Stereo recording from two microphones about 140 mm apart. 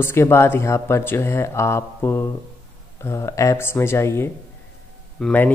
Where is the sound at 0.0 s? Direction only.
15° left (ahead or behind).